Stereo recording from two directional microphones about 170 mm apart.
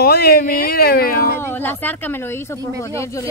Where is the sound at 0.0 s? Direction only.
65° left (ahead or behind).